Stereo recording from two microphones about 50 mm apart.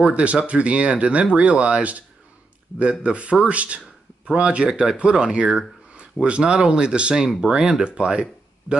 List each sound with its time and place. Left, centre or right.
0.0 s speech: right